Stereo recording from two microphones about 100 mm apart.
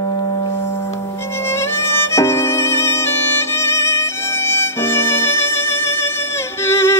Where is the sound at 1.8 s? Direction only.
25° left (ahead or behind).